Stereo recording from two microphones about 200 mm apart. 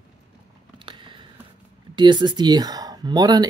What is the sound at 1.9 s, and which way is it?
Speech, 25° right (ahead or behind).